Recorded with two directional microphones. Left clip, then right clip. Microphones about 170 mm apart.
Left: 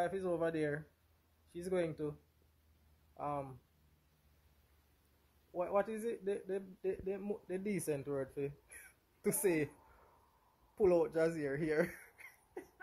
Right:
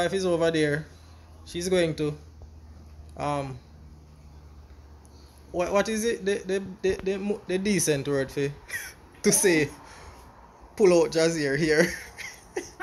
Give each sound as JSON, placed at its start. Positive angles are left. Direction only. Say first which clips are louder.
{"t": 0.0, "sound": "speech", "louder": "right 12 dB", "side_deg": 10}
{"t": 3.2, "sound": "speech", "louder": "right 12 dB", "side_deg": 5}
{"t": 5.6, "sound": "speech", "louder": "right 11 dB", "side_deg": 5}
{"t": 10.8, "sound": "speech", "louder": "right 11 dB", "side_deg": 15}